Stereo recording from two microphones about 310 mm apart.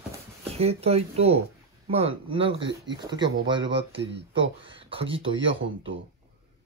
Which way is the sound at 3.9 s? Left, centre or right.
Right.